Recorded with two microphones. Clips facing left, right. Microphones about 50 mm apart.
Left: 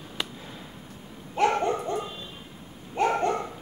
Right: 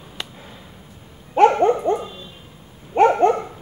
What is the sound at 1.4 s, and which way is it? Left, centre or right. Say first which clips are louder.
Hoot: right 10 dB; right.